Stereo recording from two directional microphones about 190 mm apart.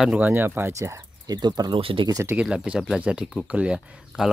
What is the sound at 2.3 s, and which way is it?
Speech, 5° right (ahead or behind).